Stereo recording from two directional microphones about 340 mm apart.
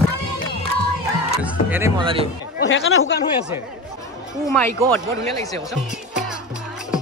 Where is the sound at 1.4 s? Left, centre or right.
Centre.